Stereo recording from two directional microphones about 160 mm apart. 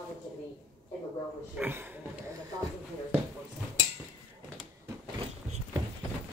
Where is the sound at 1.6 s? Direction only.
10° right (ahead or behind).